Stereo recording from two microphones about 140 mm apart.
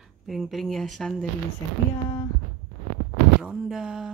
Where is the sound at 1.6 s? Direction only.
20° left (ahead or behind).